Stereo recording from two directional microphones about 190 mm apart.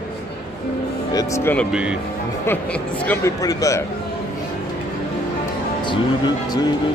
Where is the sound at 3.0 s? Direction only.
15° left (ahead or behind).